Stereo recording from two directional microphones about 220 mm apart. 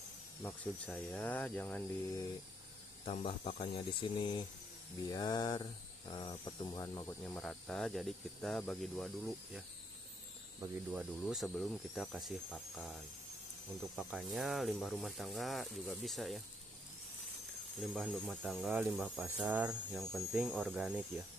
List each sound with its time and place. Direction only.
0.8 s speech: 5° left (ahead or behind)
3.1 s speech: 30° left (ahead or behind); by 9.7 s centre (ahead or behind)
10.9 s speech: centre (ahead or behind)
17.9 s speech: centre (ahead or behind)